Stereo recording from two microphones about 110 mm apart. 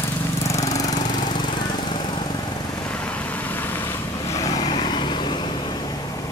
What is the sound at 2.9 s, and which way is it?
Vehicle, 15° left (ahead or behind).